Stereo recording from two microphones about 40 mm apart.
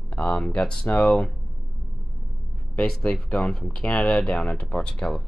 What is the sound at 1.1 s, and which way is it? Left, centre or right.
Speech, centre.